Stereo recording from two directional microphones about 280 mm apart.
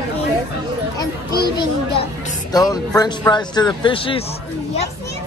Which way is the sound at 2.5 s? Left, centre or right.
Centre.